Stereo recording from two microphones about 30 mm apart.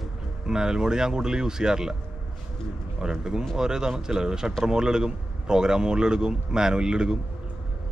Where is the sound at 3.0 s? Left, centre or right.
Right.